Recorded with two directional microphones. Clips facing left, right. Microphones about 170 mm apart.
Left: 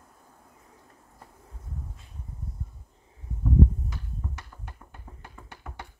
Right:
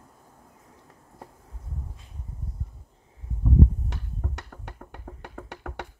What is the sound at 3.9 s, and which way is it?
Music, 70° right (ahead or behind).